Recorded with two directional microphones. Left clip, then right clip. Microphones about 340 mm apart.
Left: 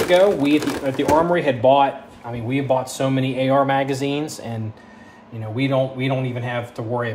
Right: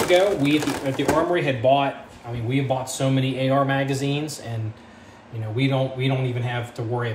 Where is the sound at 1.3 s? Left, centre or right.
Left.